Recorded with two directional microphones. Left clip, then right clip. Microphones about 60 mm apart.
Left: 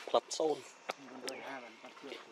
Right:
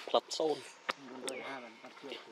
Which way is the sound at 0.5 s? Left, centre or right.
Right.